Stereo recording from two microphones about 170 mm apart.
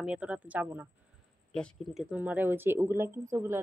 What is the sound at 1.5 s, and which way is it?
Speech, centre (ahead or behind).